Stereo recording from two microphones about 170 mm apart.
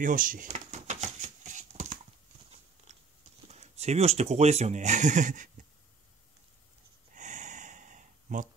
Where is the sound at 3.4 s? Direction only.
40° right (ahead or behind).